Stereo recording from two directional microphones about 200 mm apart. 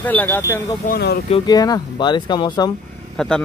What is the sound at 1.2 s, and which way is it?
Speech, 25° left (ahead or behind).